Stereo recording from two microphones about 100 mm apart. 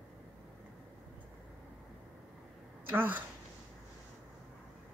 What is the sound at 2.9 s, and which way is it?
Speech, 20° right (ahead or behind).